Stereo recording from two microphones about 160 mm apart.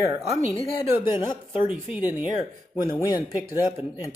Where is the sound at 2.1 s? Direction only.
10° right (ahead or behind).